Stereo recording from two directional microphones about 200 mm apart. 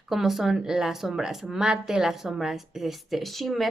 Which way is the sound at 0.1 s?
Centre (ahead or behind).